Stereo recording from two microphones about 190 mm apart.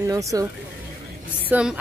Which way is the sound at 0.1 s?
20° right (ahead or behind).